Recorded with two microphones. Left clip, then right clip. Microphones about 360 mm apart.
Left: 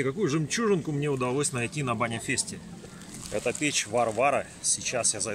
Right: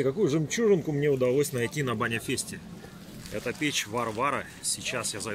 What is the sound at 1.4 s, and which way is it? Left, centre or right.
Speech, centre.